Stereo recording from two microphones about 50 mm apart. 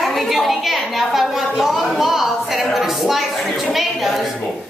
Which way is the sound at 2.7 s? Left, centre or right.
Centre.